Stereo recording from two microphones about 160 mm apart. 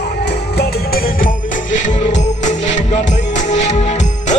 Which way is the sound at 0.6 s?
65° left (ahead or behind).